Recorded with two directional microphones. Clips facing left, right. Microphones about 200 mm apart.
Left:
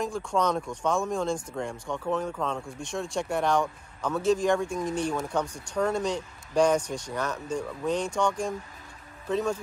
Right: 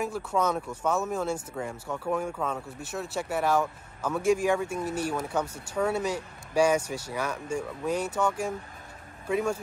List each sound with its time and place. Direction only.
0.0 s speech: 5° right (ahead or behind)